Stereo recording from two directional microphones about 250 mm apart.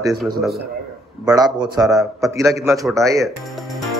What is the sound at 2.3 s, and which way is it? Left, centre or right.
Speech, centre.